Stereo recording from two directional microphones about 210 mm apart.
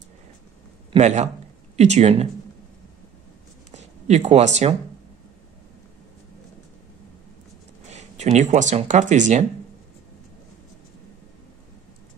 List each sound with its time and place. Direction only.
0.9 s speech: 35° right (ahead or behind)
3.7 s speech: 30° right (ahead or behind)
7.8 s speech: 35° right (ahead or behind)